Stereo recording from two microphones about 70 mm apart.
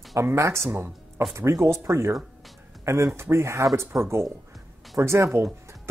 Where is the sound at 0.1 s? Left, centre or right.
Right.